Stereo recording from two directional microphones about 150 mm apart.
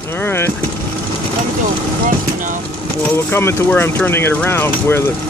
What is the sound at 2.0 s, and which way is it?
Vehicle, 60° right (ahead or behind).